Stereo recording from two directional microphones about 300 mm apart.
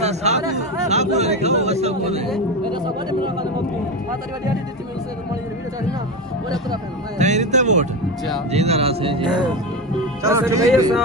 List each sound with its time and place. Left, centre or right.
0.0 s speech: right
7.2 s speech: right